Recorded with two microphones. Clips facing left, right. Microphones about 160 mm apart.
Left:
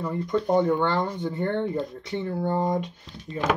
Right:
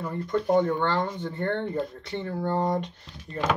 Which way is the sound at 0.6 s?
10° left (ahead or behind).